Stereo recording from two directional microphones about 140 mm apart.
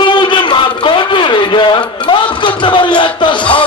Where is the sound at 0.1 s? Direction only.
35° left (ahead or behind).